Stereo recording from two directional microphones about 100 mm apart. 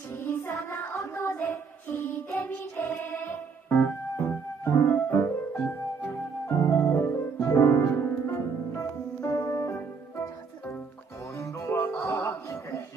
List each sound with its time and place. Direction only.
0.2 s child singing: 25° left (ahead or behind)
6.0 s music: 25° left (ahead or behind)
11.3 s music: 25° left (ahead or behind)